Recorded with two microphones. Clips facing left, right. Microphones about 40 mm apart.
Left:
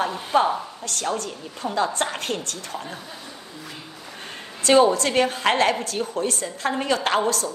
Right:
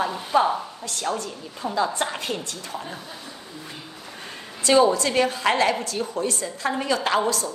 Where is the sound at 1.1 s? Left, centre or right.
Left.